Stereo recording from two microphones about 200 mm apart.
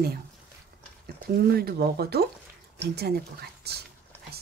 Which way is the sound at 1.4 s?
50° right (ahead or behind).